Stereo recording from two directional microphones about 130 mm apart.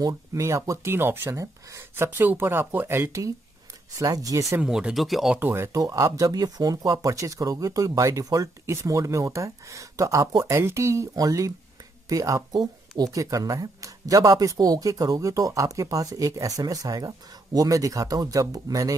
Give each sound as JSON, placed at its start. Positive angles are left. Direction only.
{"t": 0.0, "sound": "speech", "side_deg": -25}
{"t": 4.6, "sound": "speech", "side_deg": -5}
{"t": 5.4, "sound": "speech", "side_deg": -20}